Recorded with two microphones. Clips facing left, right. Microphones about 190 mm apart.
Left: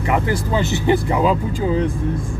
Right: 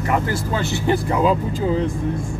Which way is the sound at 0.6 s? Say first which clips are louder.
Left 3 dB; 20° left (ahead or behind).